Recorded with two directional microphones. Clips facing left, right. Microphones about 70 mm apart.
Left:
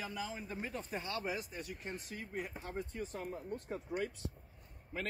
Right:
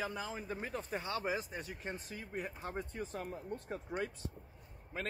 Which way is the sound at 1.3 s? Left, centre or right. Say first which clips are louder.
Right 3 dB; right.